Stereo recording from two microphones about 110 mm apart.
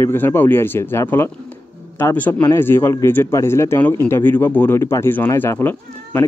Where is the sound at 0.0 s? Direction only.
20° left (ahead or behind).